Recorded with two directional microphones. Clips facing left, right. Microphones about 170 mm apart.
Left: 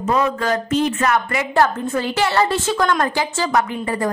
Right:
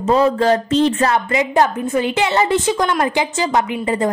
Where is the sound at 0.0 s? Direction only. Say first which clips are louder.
Right 5 dB; 30° right (ahead or behind).